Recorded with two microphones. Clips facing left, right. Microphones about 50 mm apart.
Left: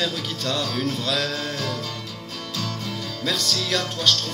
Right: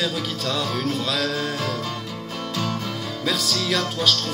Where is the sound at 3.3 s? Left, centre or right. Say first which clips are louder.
Right 1 dB; centre.